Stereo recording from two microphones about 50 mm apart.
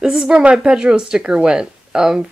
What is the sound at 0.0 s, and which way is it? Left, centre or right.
Speech, centre.